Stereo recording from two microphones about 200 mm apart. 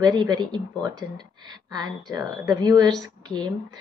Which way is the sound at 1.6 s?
20° right (ahead or behind).